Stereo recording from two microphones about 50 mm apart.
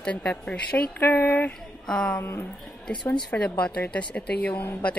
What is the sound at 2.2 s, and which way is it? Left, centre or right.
Speech, left.